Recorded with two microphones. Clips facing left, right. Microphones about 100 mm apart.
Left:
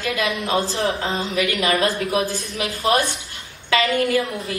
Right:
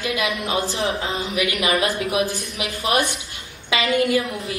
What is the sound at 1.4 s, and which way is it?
Speech, 15° right (ahead or behind).